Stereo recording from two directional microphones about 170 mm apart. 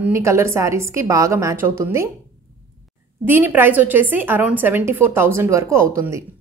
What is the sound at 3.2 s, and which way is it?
A woman's voice, 15° right (ahead or behind).